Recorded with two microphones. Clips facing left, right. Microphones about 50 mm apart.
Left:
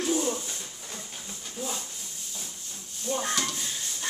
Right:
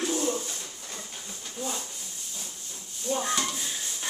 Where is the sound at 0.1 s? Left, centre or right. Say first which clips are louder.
Left 1 dB; centre.